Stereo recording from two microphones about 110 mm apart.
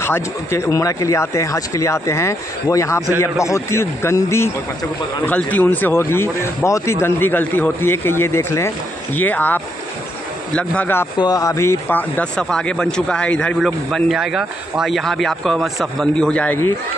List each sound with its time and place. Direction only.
0.0 s speech: 25° left (ahead or behind)
5.2 s speech: 15° left (ahead or behind)
11.1 s speech: 35° left (ahead or behind); by 16.5 s 10° left (ahead or behind)